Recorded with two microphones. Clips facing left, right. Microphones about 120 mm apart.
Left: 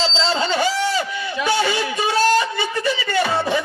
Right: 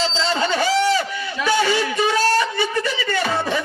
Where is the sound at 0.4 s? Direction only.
15° left (ahead or behind).